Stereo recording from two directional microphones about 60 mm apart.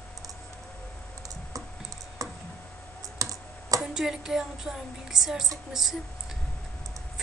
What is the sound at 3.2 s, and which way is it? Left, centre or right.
Computer keyboard, right.